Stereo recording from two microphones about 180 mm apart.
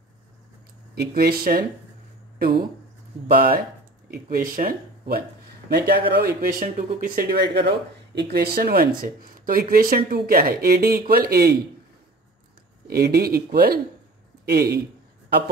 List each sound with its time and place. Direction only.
0.9 s speech: 60° right (ahead or behind)
3.3 s speech: 55° right (ahead or behind)
12.8 s speech: 60° right (ahead or behind)